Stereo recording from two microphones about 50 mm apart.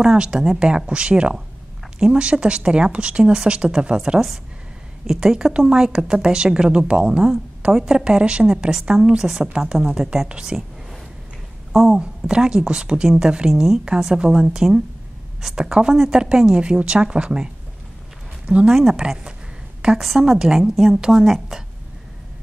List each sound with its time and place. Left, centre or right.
0.0 s a woman's voice: centre
5.0 s a woman's voice: centre
11.7 s speech: centre
12.0 s a woman's voice: centre
13.5 s a woman's voice: centre
15.9 s a woman's voice: centre
18.5 s speech: right
18.8 s a woman's voice: centre
20.7 s a woman's voice: centre